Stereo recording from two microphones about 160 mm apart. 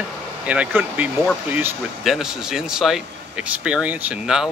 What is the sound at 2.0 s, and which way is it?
Speech, 5° right (ahead or behind).